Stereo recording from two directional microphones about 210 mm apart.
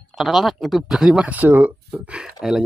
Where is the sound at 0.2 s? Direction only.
Centre (ahead or behind).